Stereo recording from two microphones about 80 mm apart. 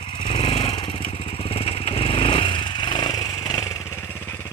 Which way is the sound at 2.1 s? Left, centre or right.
Left.